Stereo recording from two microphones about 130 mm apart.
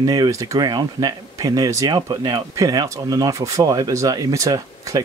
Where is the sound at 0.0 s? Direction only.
30° right (ahead or behind).